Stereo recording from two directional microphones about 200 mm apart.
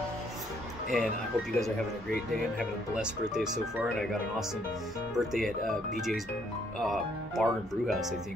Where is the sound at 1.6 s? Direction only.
Centre (ahead or behind).